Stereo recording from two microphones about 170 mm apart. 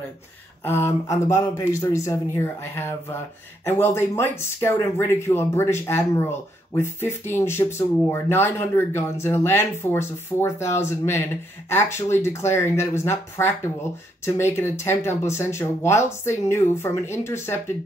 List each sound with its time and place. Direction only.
0.7 s speech: 15° left (ahead or behind)